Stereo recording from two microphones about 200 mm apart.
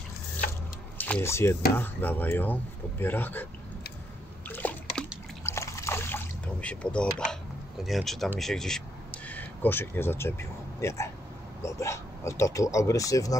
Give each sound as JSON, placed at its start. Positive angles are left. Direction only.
{"t": 0.9, "sound": "speech", "side_deg": 10}
{"t": 4.5, "sound": "splash", "side_deg": 10}
{"t": 5.4, "sound": "a sound", "side_deg": 15}
{"t": 7.8, "sound": "speech", "side_deg": 0}